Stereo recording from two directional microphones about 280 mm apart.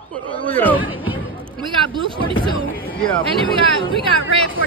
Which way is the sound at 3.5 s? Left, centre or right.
Centre.